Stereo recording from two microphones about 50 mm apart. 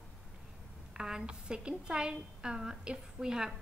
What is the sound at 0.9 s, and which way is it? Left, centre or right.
A woman's voice, centre.